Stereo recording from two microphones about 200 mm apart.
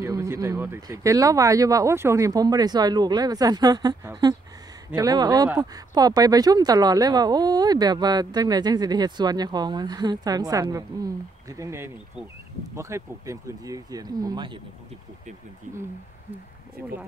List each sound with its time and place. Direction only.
0.0 s speech: 15° right (ahead or behind)